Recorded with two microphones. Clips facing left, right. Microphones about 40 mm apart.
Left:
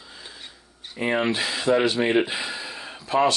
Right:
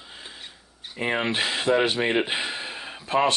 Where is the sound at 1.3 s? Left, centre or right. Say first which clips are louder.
Even; right.